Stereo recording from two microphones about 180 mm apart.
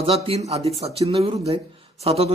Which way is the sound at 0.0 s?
35° right (ahead or behind).